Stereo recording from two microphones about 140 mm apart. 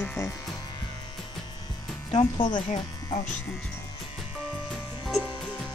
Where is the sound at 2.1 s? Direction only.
35° left (ahead or behind).